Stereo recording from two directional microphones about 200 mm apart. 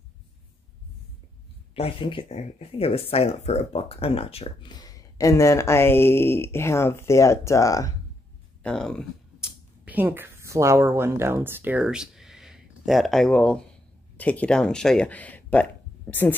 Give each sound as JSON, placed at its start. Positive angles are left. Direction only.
{"t": 1.8, "sound": "speech", "side_deg": 25}
{"t": 8.6, "sound": "a sound", "side_deg": 5}
{"t": 9.8, "sound": "speech", "side_deg": -10}